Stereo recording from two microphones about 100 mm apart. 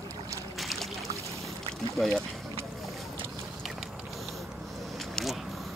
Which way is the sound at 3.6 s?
5° right (ahead or behind).